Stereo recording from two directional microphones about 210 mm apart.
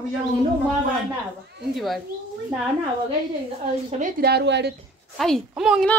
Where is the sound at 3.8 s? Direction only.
35° right (ahead or behind).